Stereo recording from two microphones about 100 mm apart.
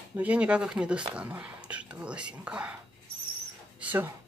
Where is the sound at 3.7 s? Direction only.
20° right (ahead or behind).